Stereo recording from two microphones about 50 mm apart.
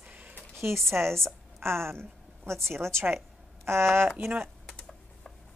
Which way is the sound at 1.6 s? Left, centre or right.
Right.